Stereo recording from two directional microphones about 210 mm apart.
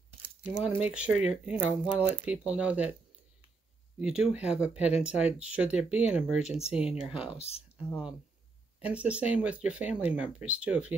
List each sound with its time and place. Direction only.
0.6 s speech: 5° right (ahead or behind)
4.0 s speech: 5° right (ahead or behind)
7.3 s speech: 30° left (ahead or behind)
8.8 s speech: 5° right (ahead or behind)